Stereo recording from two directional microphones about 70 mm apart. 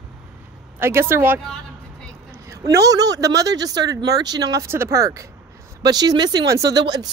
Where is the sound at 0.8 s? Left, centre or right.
Right.